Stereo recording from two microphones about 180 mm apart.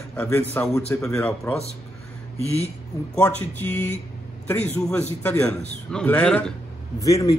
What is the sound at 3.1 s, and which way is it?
Speech, 10° left (ahead or behind).